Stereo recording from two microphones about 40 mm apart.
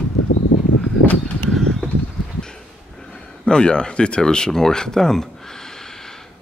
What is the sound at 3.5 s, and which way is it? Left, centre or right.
Speech, left.